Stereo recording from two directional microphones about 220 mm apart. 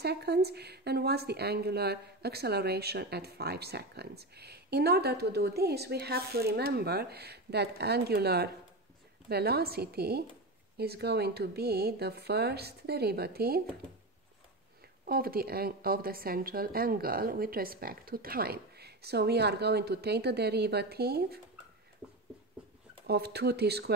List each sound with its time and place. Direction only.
0.0 s speech: 45° right (ahead or behind)
15.0 s speech: 45° right (ahead or behind)
22.0 s a sound: 5° left (ahead or behind)
23.0 s speech: 45° right (ahead or behind)